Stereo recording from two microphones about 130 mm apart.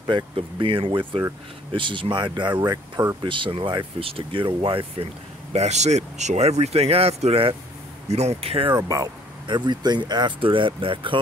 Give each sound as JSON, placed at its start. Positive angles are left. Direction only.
{"t": 0.0, "sound": "speech", "side_deg": -40}
{"t": 2.6, "sound": "speech", "side_deg": -25}
{"t": 3.3, "sound": "speech", "side_deg": -40}
{"t": 5.5, "sound": "speech", "side_deg": -55}
{"t": 8.7, "sound": "speech", "side_deg": -25}